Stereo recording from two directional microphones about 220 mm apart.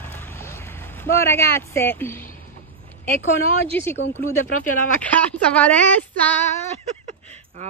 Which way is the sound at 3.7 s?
10° left (ahead or behind).